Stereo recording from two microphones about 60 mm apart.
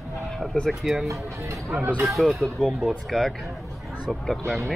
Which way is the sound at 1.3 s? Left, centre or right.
Right.